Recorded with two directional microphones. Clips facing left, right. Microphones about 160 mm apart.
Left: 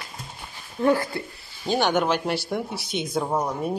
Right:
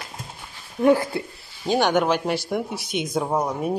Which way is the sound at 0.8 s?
15° right (ahead or behind).